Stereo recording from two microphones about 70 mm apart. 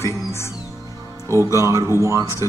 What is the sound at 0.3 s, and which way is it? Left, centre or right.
Music, left.